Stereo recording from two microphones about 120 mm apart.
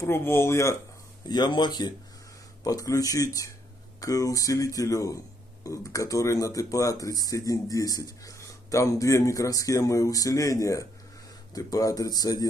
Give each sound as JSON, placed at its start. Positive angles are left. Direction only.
{"t": 0.0, "sound": "speech", "side_deg": 20}
{"t": 1.3, "sound": "speech", "side_deg": 35}